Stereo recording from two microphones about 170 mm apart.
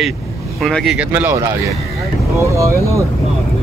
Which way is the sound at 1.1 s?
15° right (ahead or behind).